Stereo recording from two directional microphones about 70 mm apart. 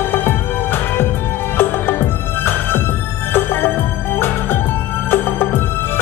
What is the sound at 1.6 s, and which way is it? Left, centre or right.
Music, left.